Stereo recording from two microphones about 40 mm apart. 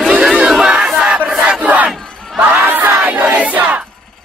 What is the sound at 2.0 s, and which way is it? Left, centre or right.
Battle cry, centre.